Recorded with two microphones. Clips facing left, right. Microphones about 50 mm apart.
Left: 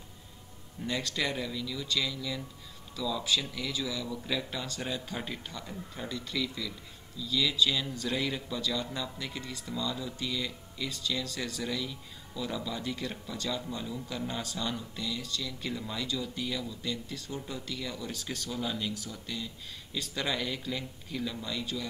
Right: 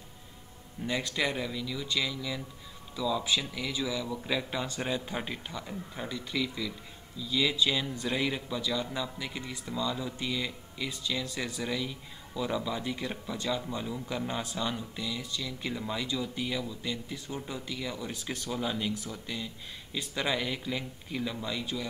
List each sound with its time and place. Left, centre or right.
0.8 s a man's voice: centre